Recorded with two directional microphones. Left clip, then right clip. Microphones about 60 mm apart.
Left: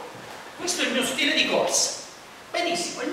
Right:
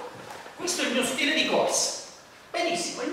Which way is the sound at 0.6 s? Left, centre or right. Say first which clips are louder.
Left 2 dB; centre.